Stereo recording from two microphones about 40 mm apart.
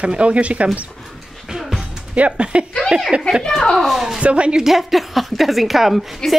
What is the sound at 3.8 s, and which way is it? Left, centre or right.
Speech, centre.